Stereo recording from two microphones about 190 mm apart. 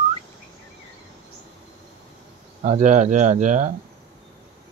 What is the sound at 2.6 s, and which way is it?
Speech, 35° right (ahead or behind).